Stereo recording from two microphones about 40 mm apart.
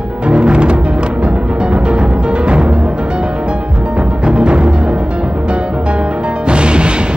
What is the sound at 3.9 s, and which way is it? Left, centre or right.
Music, right.